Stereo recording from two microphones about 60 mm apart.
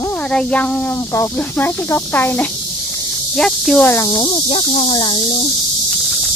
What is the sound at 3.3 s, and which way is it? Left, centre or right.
Speech, centre.